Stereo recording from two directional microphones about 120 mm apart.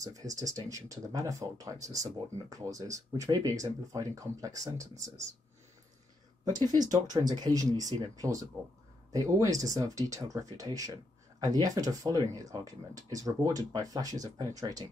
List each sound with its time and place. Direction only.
0.0 s speech: 30° right (ahead or behind)
6.7 s speech: 35° right (ahead or behind)